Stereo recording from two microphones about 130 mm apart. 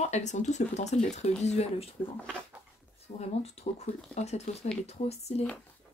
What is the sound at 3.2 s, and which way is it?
Speech, 55° left (ahead or behind).